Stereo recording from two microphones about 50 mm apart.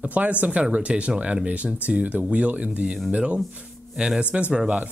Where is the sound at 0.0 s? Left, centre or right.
Right.